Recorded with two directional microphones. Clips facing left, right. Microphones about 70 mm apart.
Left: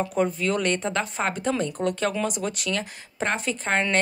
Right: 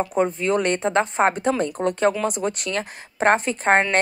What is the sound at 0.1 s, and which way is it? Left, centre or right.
A woman's voice, right.